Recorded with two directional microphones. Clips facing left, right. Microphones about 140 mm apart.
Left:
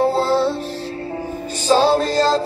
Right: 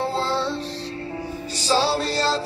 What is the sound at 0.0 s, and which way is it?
Music, 45° left (ahead or behind).